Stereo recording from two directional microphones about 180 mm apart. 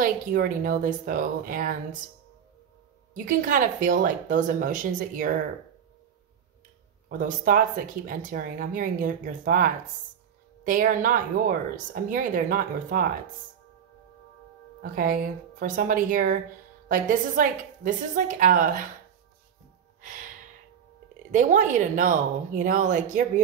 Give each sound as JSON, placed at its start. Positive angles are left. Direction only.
{"t": 0.0, "sound": "speech", "side_deg": -50}
{"t": 3.3, "sound": "speech", "side_deg": -45}
{"t": 7.1, "sound": "speech", "side_deg": -50}
{"t": 14.8, "sound": "speech", "side_deg": -50}
{"t": 21.3, "sound": "speech", "side_deg": -45}